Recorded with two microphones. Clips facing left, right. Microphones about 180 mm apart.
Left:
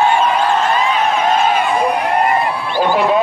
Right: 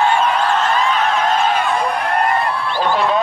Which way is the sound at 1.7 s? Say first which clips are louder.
Left 3 dB; 15° left (ahead or behind).